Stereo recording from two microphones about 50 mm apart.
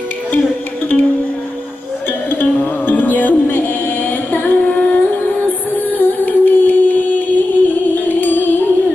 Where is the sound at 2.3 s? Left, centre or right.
Left.